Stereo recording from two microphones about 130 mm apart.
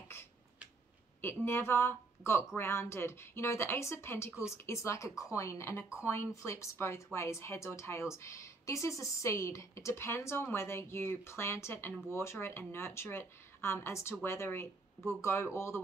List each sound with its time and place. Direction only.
1.2 s speech: 20° left (ahead or behind)